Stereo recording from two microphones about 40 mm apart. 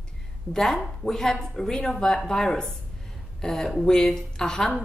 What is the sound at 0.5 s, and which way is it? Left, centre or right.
A woman's voice, centre.